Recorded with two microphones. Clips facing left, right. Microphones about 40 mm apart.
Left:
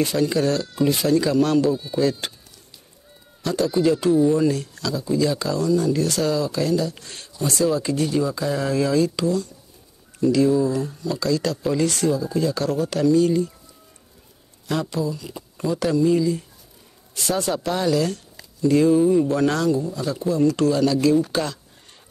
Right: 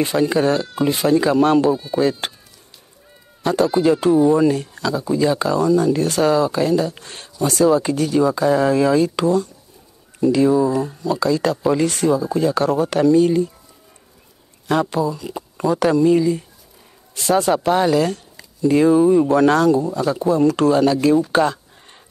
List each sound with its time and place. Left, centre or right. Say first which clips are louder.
0.0 s speech: right 3 dB; right
3.4 s speech: right 4 dB; right
8.0 s speech: right 5 dB; right
8.6 s speech: right 4 dB; right
14.7 s speech: right 6 dB; right
19.3 s speech: right 6 dB; right
19.7 s speech: right 5 dB; right
20.2 s speech: right 3 dB; right